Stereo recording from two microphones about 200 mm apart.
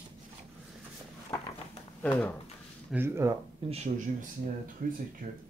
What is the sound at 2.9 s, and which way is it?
Speech, 10° right (ahead or behind).